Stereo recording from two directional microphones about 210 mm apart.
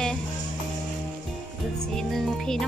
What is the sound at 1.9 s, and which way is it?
Music, 5° left (ahead or behind).